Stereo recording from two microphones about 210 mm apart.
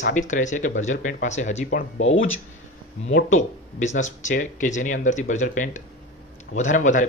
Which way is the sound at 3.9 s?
35° left (ahead or behind).